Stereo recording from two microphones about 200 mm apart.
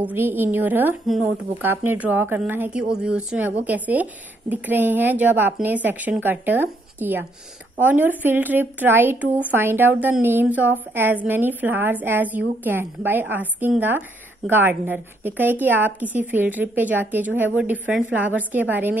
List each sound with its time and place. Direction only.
0.0 s a woman's voice: 10° right (ahead or behind)